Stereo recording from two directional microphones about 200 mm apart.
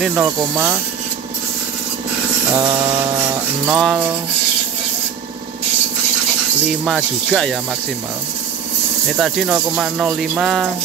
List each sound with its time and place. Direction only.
0.0 s speech: 10° right (ahead or behind)
2.5 s speech: 15° right (ahead or behind)
3.6 s speech: 5° right (ahead or behind)
6.8 s speech: 5° right (ahead or behind)
9.1 s speech: centre (ahead or behind)